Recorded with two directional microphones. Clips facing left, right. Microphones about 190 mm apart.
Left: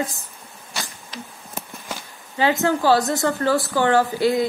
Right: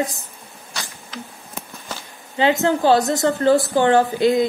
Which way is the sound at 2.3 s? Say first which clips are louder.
Right 2 dB; 20° right (ahead or behind).